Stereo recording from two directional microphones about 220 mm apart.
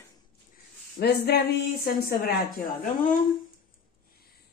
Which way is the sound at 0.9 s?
45° left (ahead or behind).